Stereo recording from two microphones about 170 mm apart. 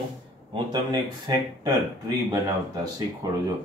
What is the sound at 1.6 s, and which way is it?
Speech, 25° right (ahead or behind).